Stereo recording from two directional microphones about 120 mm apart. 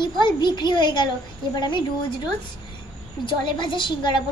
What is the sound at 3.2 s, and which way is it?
Speech, 40° left (ahead or behind).